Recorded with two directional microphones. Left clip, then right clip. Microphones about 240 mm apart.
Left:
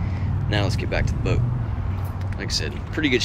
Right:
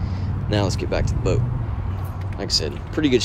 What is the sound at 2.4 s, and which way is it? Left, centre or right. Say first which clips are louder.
Speech: right 4 dB; centre.